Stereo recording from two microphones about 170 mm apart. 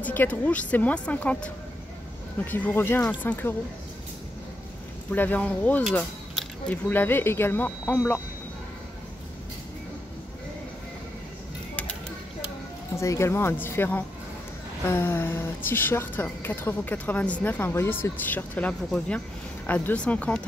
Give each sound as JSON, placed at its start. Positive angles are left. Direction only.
{"t": 0.0, "sound": "a woman's voice", "side_deg": 10}
{"t": 5.1, "sound": "a woman's voice", "side_deg": 10}
{"t": 12.9, "sound": "a woman's voice", "side_deg": 15}